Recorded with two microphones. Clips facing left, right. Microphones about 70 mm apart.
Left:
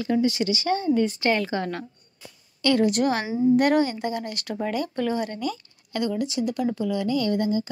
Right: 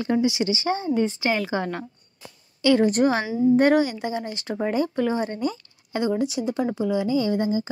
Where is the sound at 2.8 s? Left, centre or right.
Right.